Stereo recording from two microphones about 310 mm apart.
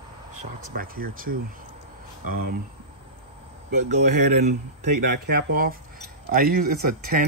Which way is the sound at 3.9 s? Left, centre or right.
Right.